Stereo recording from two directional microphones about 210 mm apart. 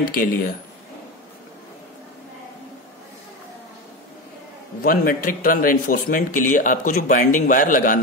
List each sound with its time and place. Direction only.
0.1 s speech: 45° left (ahead or behind)
4.8 s speech: 40° left (ahead or behind)